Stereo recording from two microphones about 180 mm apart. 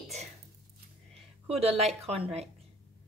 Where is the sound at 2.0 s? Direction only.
35° right (ahead or behind).